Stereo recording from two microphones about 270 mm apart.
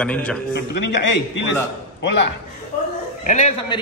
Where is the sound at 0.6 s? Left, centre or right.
Left.